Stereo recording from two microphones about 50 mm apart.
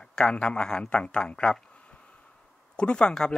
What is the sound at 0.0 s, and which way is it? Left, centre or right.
A man's voice, centre.